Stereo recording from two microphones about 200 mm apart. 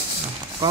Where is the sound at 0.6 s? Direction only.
25° right (ahead or behind).